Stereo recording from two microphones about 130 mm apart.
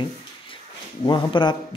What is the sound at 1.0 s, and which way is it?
Speech, 35° left (ahead or behind).